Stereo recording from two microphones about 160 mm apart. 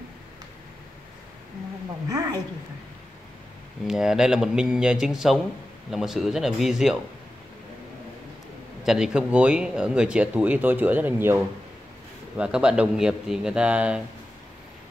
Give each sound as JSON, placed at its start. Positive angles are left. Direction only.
{"t": 2.0, "sound": "a woman's voice", "side_deg": -25}
{"t": 3.8, "sound": "speech", "side_deg": -5}
{"t": 8.8, "sound": "speech", "side_deg": -5}